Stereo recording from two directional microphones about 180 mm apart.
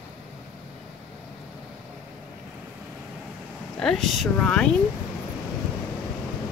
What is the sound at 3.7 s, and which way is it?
Speech, 5° left (ahead or behind).